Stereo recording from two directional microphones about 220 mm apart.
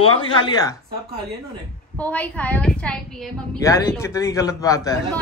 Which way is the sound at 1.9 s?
5° left (ahead or behind).